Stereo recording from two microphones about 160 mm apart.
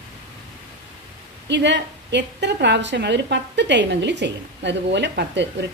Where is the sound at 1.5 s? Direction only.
90° right.